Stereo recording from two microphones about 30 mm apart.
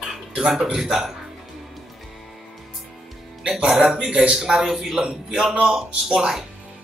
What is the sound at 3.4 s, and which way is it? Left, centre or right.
Speech, right.